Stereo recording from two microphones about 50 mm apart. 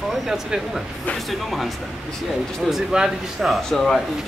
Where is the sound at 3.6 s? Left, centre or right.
Centre.